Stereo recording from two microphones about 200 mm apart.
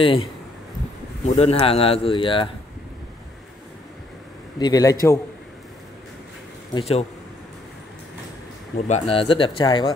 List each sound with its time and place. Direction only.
0.0 s speech: 30° left (ahead or behind)
4.6 s a man's voice: 20° left (ahead or behind)
6.7 s a man's voice: 30° left (ahead or behind)
8.7 s speech: 35° left (ahead or behind)